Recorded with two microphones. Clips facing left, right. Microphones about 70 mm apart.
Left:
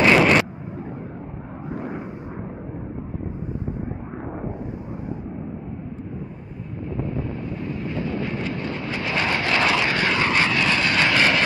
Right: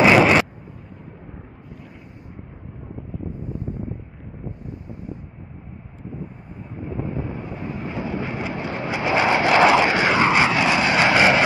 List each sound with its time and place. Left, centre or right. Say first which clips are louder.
0.0 s artillery fire: right 2 dB; centre
1.7 s vehicle: left 16 dB; left
7.9 s vehicle: even; centre